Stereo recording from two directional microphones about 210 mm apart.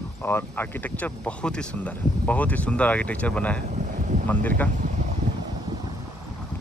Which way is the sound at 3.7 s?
35° right (ahead or behind).